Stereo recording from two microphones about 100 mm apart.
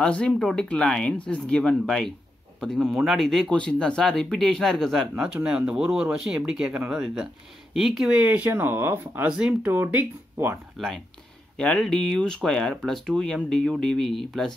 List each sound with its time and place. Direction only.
0.0 s speech: 10° left (ahead or behind)
5.1 s speech: 10° right (ahead or behind)
8.2 s speech: 15° right (ahead or behind)
9.4 s speech: 10° right (ahead or behind)
11.5 s speech: 5° left (ahead or behind)